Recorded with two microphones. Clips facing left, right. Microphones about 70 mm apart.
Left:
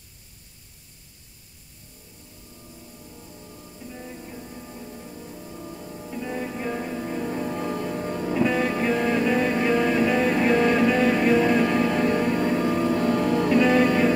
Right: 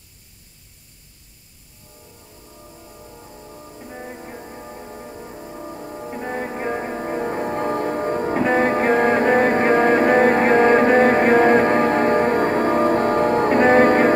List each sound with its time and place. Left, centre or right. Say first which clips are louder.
3.1 s music: right 5 dB; right